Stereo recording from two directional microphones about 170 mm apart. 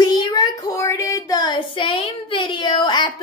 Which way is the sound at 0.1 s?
25° left (ahead or behind).